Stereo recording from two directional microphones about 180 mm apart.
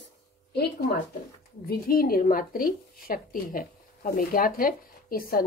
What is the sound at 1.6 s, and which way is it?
A woman's voice, 55° left (ahead or behind).